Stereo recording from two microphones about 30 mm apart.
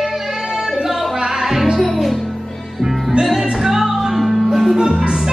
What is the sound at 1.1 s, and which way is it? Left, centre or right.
Music, right.